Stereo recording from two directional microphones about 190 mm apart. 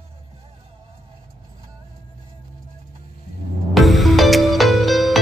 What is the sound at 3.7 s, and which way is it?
Music, centre (ahead or behind).